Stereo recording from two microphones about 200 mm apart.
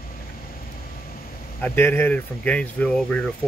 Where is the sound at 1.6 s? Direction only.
10° left (ahead or behind).